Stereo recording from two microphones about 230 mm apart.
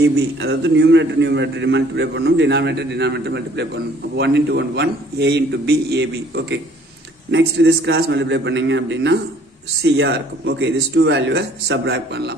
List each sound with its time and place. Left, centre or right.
0.0 s a man's voice: right